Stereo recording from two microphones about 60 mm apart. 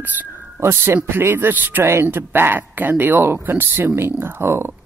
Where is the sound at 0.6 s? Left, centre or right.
Right.